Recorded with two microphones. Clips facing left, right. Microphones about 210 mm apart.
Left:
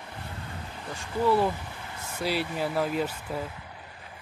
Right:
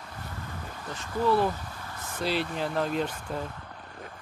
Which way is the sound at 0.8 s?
15° left (ahead or behind).